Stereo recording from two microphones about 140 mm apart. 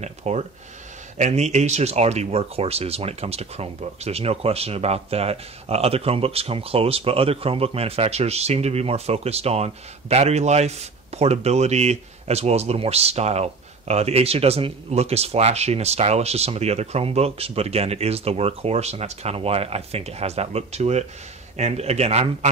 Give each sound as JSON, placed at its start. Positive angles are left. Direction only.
{"t": 0.0, "sound": "speech", "side_deg": -50}